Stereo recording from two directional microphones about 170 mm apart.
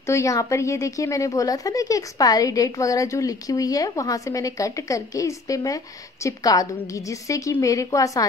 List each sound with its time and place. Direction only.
0.0 s a woman's voice: 15° left (ahead or behind)